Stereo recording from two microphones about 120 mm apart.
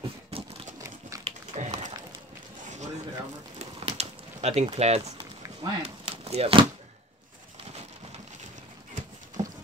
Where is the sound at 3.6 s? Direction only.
60° right (ahead or behind).